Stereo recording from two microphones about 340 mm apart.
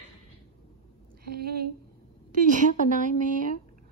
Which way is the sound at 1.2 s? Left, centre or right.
Right.